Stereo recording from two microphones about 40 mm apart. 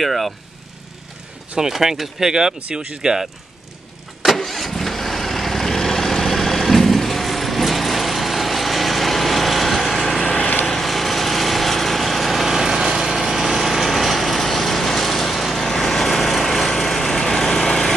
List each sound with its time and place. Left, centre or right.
0.0 s speech: centre
1.6 s speech: centre
4.2 s vehicle: centre
10.2 s vehicle: left
10.6 s lawn mower: centre